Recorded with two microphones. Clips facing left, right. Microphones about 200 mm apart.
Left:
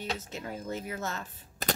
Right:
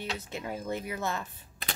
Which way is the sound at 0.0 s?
40° left (ahead or behind).